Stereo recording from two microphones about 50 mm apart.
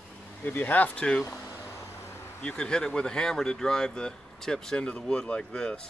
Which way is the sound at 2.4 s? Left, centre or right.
Centre.